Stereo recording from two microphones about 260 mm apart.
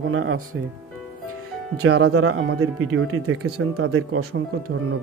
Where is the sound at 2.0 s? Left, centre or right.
Right.